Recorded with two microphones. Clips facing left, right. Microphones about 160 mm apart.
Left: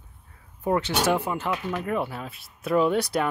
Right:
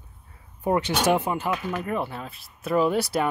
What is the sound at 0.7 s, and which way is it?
Speech, 15° right (ahead or behind).